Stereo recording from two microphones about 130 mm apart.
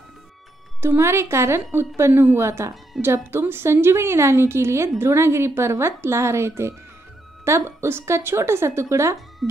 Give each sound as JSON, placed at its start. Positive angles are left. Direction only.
{"t": 0.7, "sound": "a woman's voice", "side_deg": -20}